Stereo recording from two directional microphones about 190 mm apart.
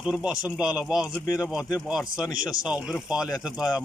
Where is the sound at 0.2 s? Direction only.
5° right (ahead or behind).